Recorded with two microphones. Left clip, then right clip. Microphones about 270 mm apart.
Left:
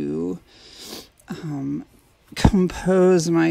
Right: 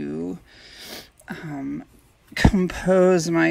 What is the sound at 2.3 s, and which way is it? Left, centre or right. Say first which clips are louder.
Speech: left 1 dB; left.